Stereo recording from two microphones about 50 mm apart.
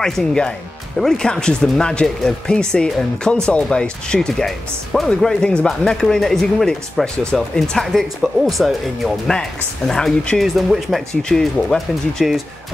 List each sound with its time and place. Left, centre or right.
0.0 s speech: centre
4.5 s speech: centre
9.3 s speech: centre
10.4 s speech: centre
11.2 s speech: centre